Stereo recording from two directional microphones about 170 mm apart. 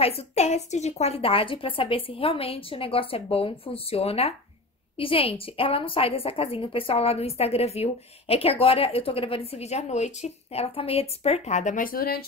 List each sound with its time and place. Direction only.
0.0 s a woman's voice: 35° left (ahead or behind); by 12.2 s 60° left (ahead or behind)